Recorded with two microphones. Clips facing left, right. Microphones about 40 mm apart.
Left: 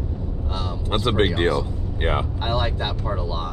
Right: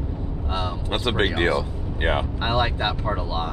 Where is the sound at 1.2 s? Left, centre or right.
Right.